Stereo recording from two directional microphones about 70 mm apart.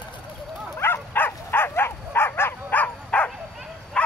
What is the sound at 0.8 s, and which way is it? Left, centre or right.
Dog, left.